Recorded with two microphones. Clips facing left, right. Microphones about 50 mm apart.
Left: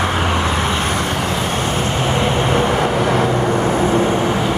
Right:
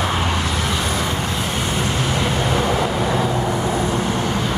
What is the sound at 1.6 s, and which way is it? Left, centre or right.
Vehicle, left.